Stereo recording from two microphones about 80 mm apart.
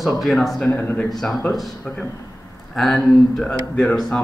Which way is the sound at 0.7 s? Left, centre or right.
Left.